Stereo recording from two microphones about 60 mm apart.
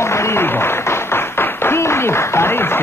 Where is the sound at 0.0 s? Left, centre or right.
Left.